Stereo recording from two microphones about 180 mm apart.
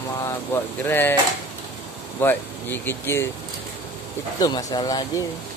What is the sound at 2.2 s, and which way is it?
Speech, 10° left (ahead or behind).